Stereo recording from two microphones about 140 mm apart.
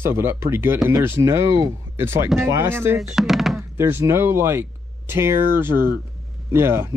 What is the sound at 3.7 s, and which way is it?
Speech, 15° right (ahead or behind).